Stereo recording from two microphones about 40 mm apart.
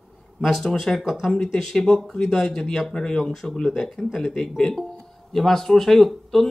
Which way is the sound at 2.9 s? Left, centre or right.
Centre.